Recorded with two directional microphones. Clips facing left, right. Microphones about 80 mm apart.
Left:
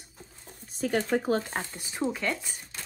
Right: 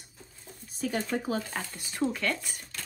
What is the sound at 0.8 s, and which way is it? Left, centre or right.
Speech, left.